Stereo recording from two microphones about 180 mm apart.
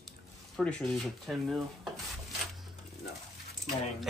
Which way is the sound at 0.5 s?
Centre (ahead or behind).